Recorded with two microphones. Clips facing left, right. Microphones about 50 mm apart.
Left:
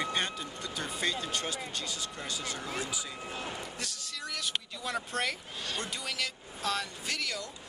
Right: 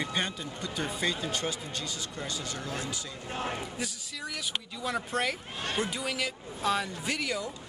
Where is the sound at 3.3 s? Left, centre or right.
Right.